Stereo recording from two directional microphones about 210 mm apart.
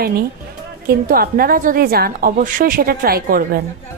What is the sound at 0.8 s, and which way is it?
Speech, 45° right (ahead or behind).